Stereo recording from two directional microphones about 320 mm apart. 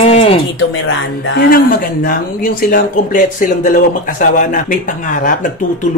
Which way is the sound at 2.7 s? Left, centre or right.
Left.